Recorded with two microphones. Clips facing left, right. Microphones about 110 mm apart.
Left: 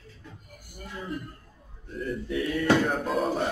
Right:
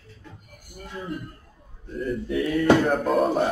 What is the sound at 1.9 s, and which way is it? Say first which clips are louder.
Mantra: right 4 dB; centre (ahead or behind).